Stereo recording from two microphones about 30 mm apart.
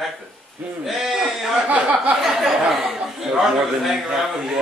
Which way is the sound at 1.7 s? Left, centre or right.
Right.